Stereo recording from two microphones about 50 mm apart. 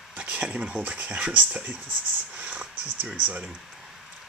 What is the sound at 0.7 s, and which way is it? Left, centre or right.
Speech, right.